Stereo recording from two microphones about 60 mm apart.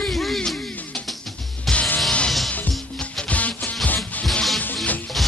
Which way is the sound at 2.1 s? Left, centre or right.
Centre.